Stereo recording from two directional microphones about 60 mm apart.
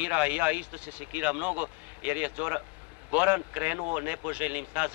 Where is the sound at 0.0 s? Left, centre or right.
Right.